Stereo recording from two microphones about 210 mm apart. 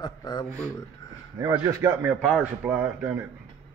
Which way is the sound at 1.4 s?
20° right (ahead or behind).